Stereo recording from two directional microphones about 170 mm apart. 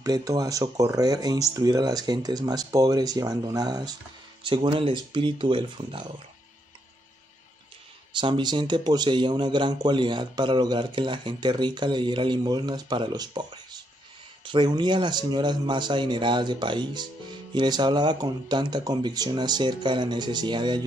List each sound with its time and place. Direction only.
0.0 s speech: 20° right (ahead or behind)
8.1 s speech: 30° right (ahead or behind)